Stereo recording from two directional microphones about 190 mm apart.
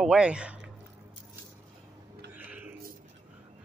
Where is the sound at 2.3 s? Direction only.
10° right (ahead or behind).